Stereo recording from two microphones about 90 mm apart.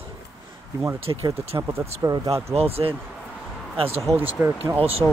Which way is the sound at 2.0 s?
45° right (ahead or behind).